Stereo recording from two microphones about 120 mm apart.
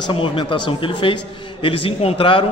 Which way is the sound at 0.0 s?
45° left (ahead or behind).